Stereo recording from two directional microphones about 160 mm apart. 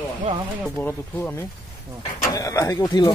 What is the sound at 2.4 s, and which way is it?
Speech, 20° left (ahead or behind).